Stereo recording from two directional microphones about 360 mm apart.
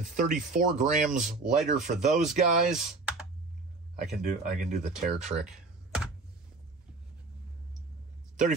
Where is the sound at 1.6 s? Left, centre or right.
Centre.